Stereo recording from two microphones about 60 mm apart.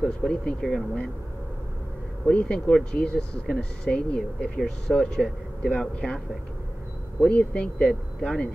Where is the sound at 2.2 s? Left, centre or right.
Centre.